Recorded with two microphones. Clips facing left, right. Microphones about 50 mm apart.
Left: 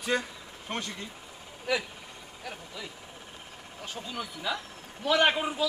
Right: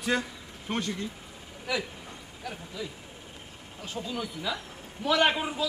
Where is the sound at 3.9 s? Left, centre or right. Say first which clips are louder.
Right 4 dB; centre.